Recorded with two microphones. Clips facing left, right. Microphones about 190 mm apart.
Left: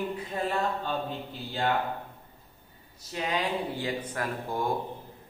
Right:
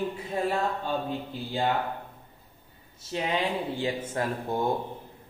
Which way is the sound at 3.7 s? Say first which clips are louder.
Right 3 dB; 25° right (ahead or behind).